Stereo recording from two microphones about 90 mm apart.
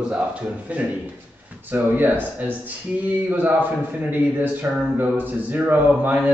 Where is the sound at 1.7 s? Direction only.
20° right (ahead or behind).